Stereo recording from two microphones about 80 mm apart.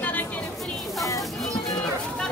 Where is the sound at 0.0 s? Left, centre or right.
Left.